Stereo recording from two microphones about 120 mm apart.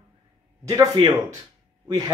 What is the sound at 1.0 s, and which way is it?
Speech, 45° right (ahead or behind).